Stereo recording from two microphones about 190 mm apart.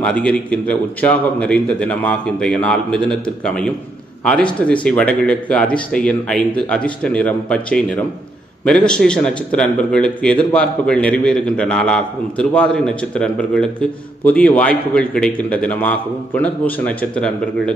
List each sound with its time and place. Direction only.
0.0 s a man's voice: 5° left (ahead or behind)